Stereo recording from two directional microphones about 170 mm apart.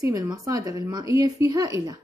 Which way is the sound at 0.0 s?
20° right (ahead or behind).